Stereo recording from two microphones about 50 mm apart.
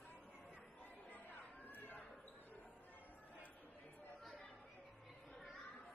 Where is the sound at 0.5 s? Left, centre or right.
Left.